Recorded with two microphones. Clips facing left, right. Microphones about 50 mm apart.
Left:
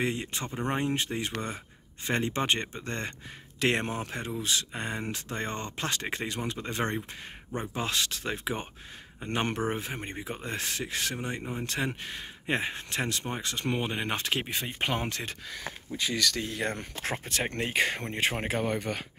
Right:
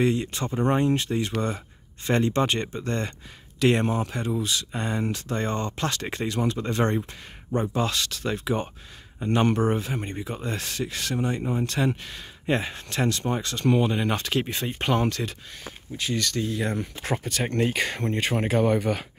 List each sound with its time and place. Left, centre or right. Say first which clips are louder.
0.0 s speech: right 7 dB; left
3.5 s speech: right 6 dB; left
14.5 s speech: right 5 dB; centre
15.9 s speech: right 2 dB; left
17.2 s speech: right 8 dB; left
18.3 s speech: right 7 dB; centre
18.7 s speech: right 7 dB; centre